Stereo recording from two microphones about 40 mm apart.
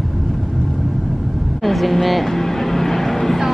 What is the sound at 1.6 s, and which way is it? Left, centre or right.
Vehicle, centre.